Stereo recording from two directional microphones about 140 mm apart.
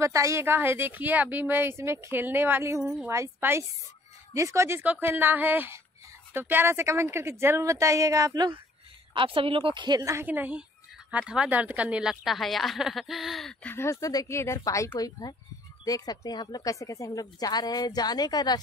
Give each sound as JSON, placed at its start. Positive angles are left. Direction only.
{"t": 0.0, "sound": "speech", "side_deg": -20}
{"t": 2.8, "sound": "a woman's voice", "side_deg": 0}
{"t": 3.1, "sound": "a woman's voice", "side_deg": -20}
{"t": 9.1, "sound": "a woman's voice", "side_deg": -40}
{"t": 10.2, "sound": "a woman's voice", "side_deg": -10}